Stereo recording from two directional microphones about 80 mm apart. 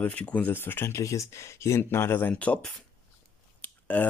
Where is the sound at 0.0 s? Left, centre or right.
Centre.